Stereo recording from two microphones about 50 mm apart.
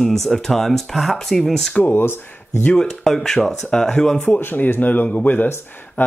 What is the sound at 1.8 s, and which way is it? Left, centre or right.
Speech, left.